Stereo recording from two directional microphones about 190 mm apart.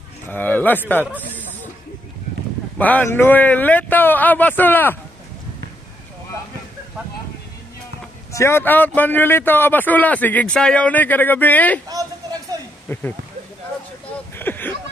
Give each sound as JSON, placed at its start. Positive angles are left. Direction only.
{"t": 0.3, "sound": "a man's voice", "side_deg": 10}
{"t": 2.8, "sound": "a man's voice", "side_deg": 10}
{"t": 8.3, "sound": "a man's voice", "side_deg": 15}
{"t": 11.9, "sound": "a sound", "side_deg": -20}
{"t": 12.8, "sound": "speech", "side_deg": 10}
{"t": 14.4, "sound": "a sound", "side_deg": 10}